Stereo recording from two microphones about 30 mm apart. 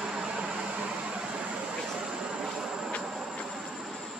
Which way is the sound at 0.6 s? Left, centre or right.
Right.